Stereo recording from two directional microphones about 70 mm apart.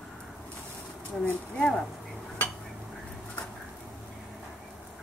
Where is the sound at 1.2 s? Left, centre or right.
Centre.